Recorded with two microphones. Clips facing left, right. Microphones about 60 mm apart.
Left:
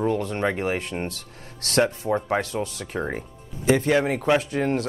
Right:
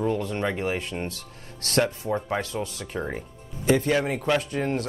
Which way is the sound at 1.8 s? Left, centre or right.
Centre.